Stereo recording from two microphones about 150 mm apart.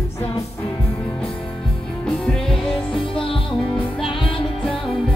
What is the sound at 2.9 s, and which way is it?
Music, 35° left (ahead or behind).